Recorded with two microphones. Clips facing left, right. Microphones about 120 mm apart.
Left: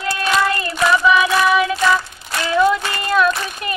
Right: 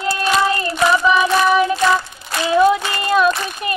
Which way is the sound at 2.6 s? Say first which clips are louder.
Right 2 dB; 15° right (ahead or behind).